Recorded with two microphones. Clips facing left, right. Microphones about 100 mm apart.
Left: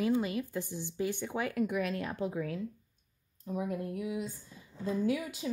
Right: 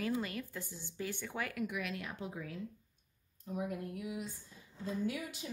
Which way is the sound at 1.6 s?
40° left (ahead or behind).